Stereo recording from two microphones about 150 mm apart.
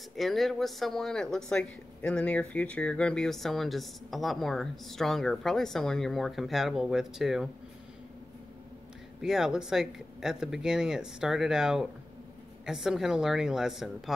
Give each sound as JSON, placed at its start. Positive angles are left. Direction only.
{"t": 0.1, "sound": "speech", "side_deg": 0}
{"t": 9.2, "sound": "speech", "side_deg": -5}